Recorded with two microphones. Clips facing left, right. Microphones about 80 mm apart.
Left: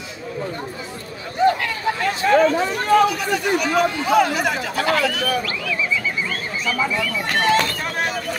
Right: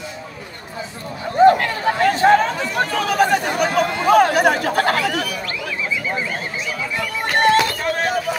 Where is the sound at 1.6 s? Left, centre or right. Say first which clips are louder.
Right 4 dB; right.